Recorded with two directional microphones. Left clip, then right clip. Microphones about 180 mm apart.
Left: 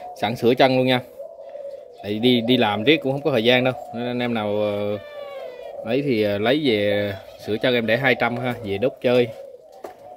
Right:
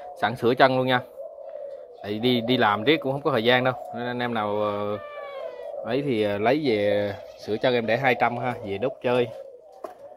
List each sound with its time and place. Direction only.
0.2 s speech: 20° left (ahead or behind)
2.0 s speech: 20° left (ahead or behind)